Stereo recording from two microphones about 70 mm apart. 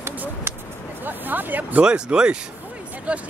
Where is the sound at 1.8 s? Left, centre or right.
Centre.